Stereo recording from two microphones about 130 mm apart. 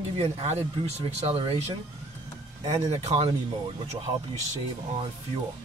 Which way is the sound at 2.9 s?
60° right (ahead or behind).